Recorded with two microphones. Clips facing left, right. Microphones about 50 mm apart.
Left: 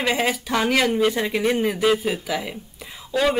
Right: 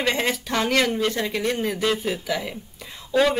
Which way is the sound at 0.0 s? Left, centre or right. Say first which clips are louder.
Left 1 dB; centre.